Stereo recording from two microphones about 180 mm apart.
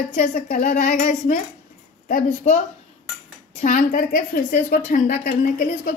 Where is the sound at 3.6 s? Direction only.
50° left (ahead or behind).